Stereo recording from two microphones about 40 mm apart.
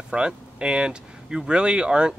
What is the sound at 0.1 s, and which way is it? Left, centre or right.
Speech, right.